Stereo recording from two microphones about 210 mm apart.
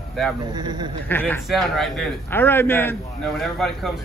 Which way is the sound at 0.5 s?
20° right (ahead or behind).